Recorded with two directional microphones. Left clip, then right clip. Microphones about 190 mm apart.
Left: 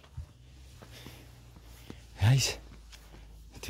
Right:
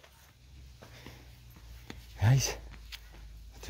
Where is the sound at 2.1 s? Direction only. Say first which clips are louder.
Left 2 dB; 25° left (ahead or behind).